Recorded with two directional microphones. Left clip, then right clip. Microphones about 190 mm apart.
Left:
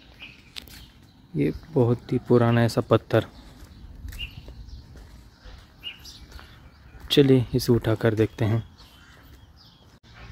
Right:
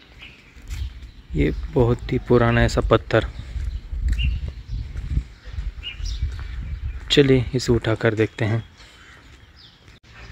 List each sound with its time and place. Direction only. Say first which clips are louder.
1.3 s speech: right 3 dB; centre (ahead or behind)
7.1 s speech: right 2 dB; 10° left (ahead or behind)